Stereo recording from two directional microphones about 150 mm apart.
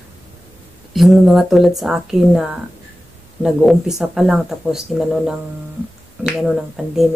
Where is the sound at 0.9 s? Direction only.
Centre (ahead or behind).